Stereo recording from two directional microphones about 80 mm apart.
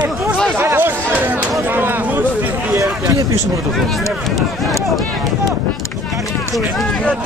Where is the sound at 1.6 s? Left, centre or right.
Right.